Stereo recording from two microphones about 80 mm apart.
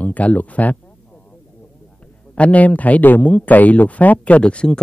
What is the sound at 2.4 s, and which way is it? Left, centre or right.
A man's voice, centre.